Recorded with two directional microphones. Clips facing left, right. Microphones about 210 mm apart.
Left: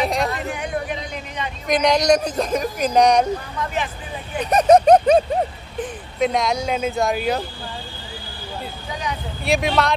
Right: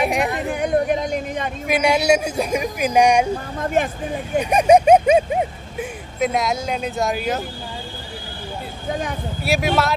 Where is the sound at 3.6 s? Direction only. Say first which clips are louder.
Right 9 dB; 50° right (ahead or behind).